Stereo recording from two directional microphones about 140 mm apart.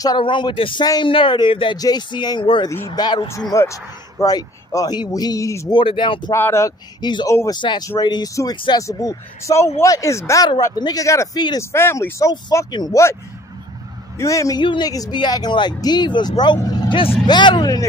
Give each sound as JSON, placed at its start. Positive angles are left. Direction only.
{"t": 0.0, "sound": "speech", "side_deg": 30}
{"t": 5.7, "sound": "speech", "side_deg": 35}
{"t": 6.3, "sound": "speech", "side_deg": 20}
{"t": 11.6, "sound": "speech", "side_deg": 20}
{"t": 14.6, "sound": "speech", "side_deg": 35}